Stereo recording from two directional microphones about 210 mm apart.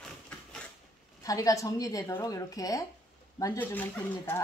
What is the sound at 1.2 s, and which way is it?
A woman's voice, 15° left (ahead or behind).